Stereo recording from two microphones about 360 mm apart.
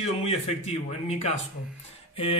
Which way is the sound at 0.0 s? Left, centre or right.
Centre.